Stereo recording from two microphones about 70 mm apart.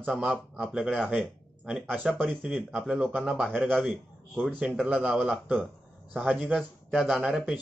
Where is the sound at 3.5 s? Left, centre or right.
Right.